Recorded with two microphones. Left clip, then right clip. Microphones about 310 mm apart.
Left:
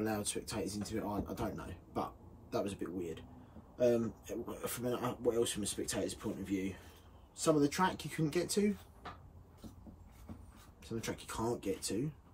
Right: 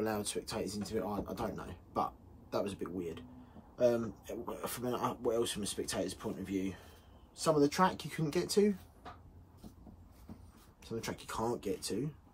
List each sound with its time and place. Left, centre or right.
0.0 s speech: centre
10.8 s speech: centre